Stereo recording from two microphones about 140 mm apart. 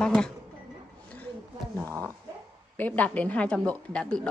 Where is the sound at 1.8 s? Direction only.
20° right (ahead or behind).